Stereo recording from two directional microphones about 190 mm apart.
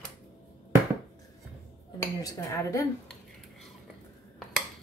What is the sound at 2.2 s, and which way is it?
Speech, 15° left (ahead or behind).